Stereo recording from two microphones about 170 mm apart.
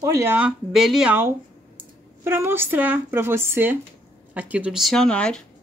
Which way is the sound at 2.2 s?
15° right (ahead or behind).